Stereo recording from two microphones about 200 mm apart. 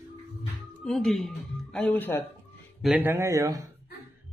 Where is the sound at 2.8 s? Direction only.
5° right (ahead or behind).